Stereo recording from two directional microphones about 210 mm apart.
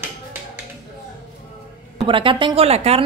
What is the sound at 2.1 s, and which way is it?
Speech, 25° right (ahead or behind).